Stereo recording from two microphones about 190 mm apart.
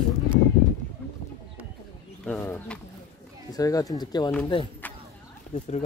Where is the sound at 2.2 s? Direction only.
10° left (ahead or behind).